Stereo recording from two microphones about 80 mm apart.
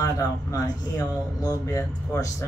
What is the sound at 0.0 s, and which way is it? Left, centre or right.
Speech, left.